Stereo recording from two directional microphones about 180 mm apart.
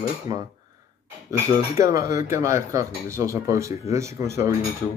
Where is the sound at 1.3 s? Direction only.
15° right (ahead or behind).